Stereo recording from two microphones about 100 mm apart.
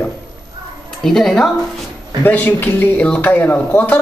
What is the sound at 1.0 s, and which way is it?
Speech, 5° left (ahead or behind).